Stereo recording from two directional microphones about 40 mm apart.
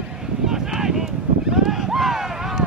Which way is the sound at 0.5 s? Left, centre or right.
Centre.